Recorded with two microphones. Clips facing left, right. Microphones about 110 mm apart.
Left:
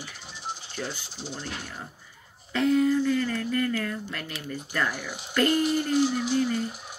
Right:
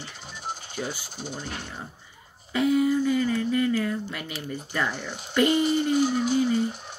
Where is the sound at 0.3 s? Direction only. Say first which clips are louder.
Right 2 dB; 50° right (ahead or behind).